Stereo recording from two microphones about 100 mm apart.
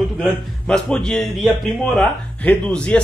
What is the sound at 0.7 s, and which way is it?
A man's voice, 5° left (ahead or behind).